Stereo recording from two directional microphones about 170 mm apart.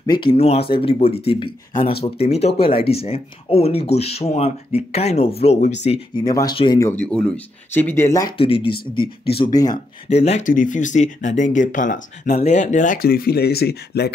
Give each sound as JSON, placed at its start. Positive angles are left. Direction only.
{"t": 0.0, "sound": "speech", "side_deg": 25}
{"t": 6.2, "sound": "speech", "side_deg": 25}
{"t": 6.8, "sound": "speech", "side_deg": 10}
{"t": 8.4, "sound": "speech", "side_deg": 35}
{"t": 9.4, "sound": "speech", "side_deg": 20}
{"t": 10.0, "sound": "speech", "side_deg": 40}